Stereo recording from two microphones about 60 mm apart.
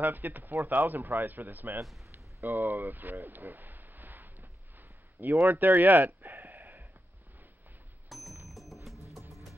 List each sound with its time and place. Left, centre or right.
0.0 s speech: right
2.4 s a sound: right
8.1 s music: centre